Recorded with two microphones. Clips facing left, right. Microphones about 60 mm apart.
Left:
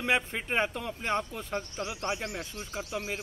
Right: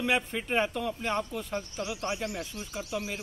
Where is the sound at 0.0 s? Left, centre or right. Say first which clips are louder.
Even; left.